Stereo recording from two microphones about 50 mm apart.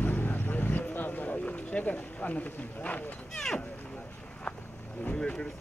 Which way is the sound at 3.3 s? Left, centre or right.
Centre.